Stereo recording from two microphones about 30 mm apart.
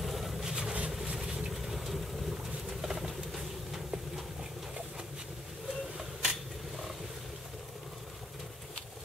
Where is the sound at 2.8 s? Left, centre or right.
Centre.